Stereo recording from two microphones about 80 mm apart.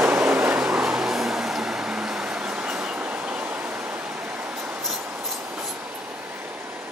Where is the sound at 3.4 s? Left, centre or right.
Centre.